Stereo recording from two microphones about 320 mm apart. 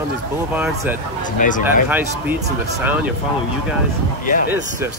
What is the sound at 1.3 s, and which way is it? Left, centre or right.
Speech, left.